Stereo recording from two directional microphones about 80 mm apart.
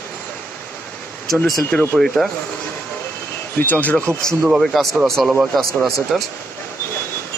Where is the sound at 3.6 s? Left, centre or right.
Left.